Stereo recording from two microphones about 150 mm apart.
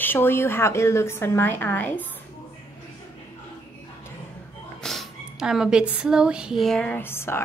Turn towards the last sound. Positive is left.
turn(degrees=15)  # may be behind; listen again after turning